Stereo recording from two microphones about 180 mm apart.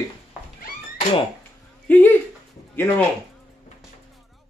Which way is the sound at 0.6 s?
45° left (ahead or behind).